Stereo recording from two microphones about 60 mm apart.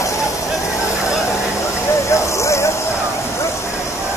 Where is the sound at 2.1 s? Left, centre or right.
Left.